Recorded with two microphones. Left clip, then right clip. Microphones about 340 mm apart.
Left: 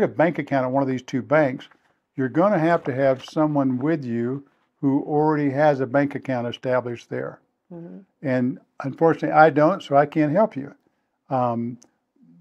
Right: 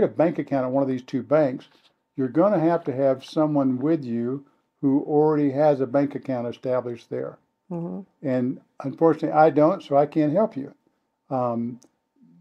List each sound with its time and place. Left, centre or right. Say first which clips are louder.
0.0 s speech: left 1 dB; left